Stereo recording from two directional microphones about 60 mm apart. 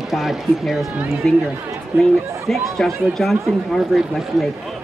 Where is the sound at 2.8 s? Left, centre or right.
Centre.